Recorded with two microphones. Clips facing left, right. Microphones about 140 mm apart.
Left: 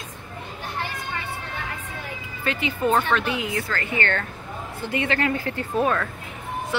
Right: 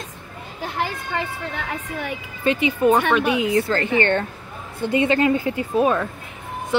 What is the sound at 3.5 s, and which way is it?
A woman's voice, 30° right (ahead or behind).